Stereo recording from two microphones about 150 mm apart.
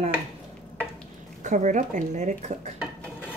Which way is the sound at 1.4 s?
55° right (ahead or behind).